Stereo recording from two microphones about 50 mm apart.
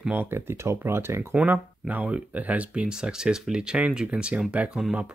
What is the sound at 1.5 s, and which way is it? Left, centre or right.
Speech, right.